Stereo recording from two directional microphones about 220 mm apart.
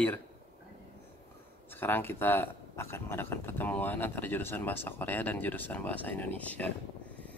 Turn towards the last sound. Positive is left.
turn(degrees=5)  # may be behind; listen again after turning